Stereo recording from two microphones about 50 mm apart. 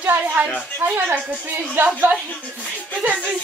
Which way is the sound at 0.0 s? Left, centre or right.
Right.